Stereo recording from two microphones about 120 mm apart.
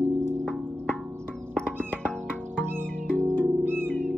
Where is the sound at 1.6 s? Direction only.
10° left (ahead or behind).